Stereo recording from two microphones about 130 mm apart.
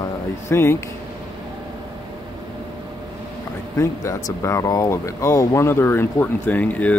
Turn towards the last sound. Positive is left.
turn(degrees=10)  # may be behind; listen again after turning